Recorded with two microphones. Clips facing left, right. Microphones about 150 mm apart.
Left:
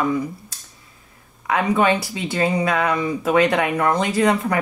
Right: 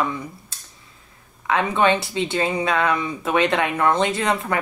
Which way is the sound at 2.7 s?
25° left (ahead or behind).